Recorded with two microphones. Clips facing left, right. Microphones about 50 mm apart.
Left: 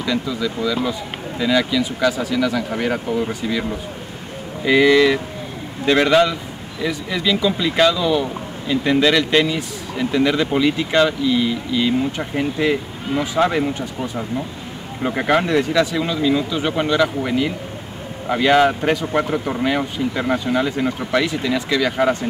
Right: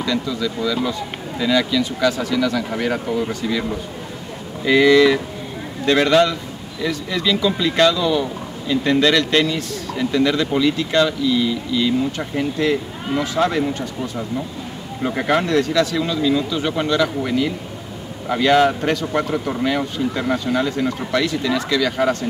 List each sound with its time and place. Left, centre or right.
0.0 s speech: centre
4.6 s speech: centre